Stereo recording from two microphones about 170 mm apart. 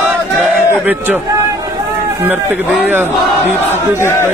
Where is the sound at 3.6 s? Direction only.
15° left (ahead or behind).